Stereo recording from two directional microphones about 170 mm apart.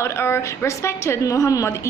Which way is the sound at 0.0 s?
15° left (ahead or behind).